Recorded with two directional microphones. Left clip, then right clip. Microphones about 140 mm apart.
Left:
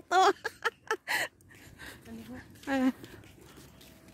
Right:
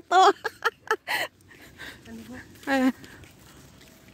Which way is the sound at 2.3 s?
45° right (ahead or behind).